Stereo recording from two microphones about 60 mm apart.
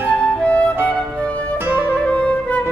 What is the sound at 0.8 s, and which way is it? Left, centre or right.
Music, right.